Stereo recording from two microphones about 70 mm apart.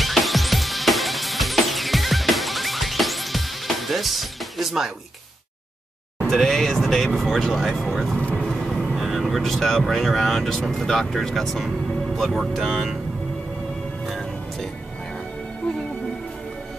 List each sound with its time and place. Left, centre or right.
0.0 s music: centre
6.2 s speech: centre
8.3 s vehicle: centre
8.7 s speech: centre
14.0 s music: centre